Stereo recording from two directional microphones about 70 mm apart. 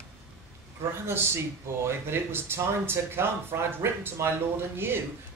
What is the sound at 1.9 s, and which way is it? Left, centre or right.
Speech, right.